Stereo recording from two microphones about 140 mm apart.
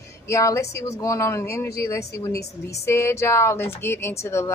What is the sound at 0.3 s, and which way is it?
Speech, 20° left (ahead or behind).